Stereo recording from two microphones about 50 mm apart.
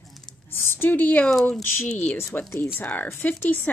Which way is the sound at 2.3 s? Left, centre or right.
Left.